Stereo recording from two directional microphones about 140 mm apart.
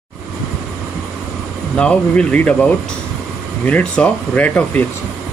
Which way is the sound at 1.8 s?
10° left (ahead or behind).